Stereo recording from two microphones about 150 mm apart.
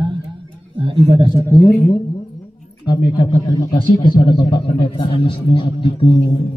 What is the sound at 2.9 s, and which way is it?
Speech, 30° left (ahead or behind).